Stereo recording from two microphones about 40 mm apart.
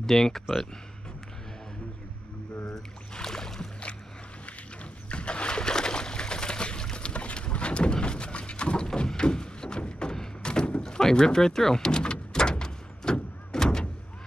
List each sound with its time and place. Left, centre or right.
0.0 s speech: centre
2.7 s boat: centre
5.1 s boat: left
8.8 s a sound: centre